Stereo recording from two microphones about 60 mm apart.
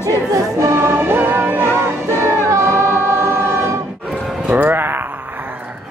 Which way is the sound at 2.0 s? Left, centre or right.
Right.